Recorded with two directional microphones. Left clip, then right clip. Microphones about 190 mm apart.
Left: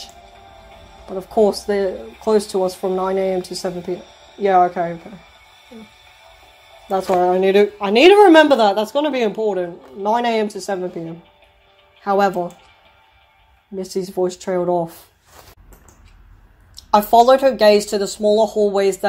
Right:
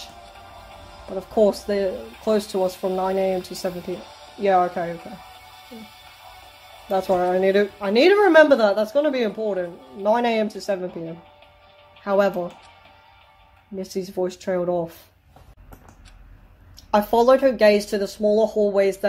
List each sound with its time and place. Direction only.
1.1 s speech: 15° left (ahead or behind)
4.0 s a sound: 50° right (ahead or behind)
4.4 s speech: 10° left (ahead or behind)
6.9 s a woman's voice: 15° left (ahead or behind)
10.0 s speech: 15° left (ahead or behind)
12.0 s speech: 15° left (ahead or behind)
13.7 s speech: 15° left (ahead or behind)
16.9 s a woman's voice: 20° left (ahead or behind)